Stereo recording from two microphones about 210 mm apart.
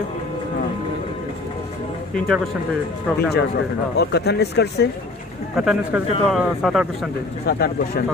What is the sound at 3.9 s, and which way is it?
Speech, 50° left (ahead or behind).